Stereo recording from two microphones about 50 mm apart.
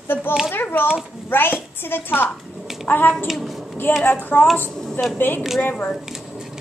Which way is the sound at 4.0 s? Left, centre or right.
Left.